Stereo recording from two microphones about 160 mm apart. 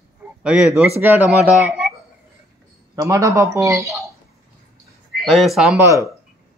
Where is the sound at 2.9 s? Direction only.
20° right (ahead or behind).